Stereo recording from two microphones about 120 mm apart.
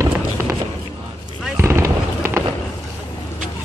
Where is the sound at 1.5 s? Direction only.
25° right (ahead or behind).